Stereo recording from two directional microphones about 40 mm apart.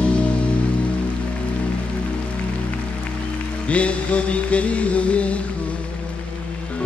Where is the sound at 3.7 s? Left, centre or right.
Left.